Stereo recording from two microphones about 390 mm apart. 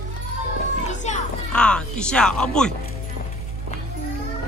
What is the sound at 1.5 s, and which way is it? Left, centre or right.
Speech, centre.